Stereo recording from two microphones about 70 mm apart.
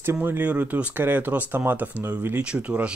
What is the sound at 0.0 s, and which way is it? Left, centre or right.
Speech, right.